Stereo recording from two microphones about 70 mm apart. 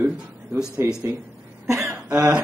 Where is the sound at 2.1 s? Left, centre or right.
Centre.